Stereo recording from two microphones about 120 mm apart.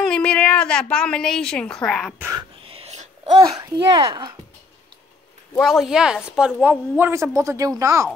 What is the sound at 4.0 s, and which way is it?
Speech, 45° right (ahead or behind).